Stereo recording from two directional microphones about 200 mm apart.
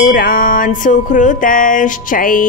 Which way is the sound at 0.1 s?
45° left (ahead or behind).